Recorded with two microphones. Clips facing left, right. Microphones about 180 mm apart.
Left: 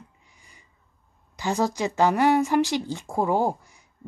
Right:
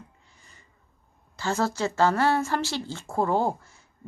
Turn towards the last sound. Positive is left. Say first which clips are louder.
# left 1 dB
turn(degrees=15)  # may be behind; listen again after turning